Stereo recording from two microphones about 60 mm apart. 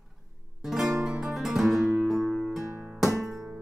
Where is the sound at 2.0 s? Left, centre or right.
Centre.